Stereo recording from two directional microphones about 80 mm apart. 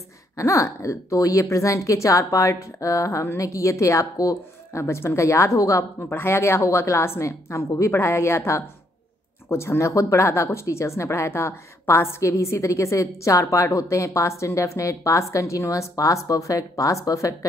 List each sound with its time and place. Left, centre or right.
0.4 s a woman's voice: left